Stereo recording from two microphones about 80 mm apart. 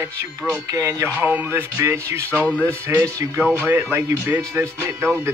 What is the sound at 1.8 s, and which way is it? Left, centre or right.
Speech, right.